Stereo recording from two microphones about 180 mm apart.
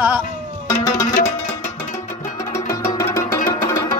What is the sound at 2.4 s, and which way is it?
Music, 15° left (ahead or behind).